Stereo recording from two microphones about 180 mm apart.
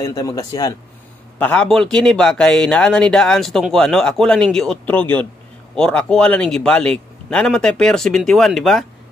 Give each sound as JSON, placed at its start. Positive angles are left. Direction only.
{"t": 0.0, "sound": "a man's voice", "side_deg": 20}
{"t": 1.4, "sound": "speech", "side_deg": 5}